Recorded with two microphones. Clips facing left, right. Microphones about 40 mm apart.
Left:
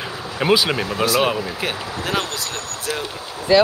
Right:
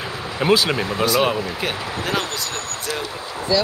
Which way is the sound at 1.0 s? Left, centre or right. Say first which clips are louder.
Even; centre.